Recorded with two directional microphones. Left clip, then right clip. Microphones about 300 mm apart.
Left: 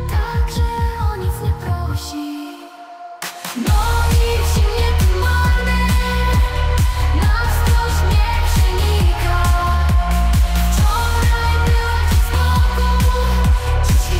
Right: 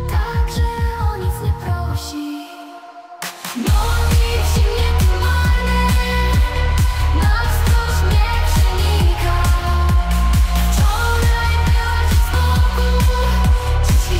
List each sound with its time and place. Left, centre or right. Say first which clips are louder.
3.6 s music: left 2 dB; centre